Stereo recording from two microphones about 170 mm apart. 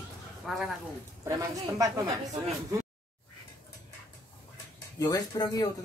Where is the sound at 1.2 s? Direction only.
20° right (ahead or behind).